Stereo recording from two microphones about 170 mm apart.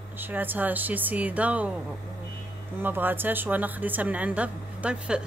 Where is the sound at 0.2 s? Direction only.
10° right (ahead or behind).